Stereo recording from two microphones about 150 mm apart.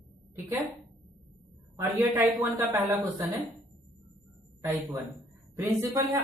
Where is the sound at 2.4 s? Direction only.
15° right (ahead or behind).